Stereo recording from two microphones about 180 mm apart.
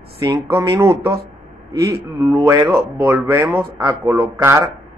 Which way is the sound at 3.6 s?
20° right (ahead or behind).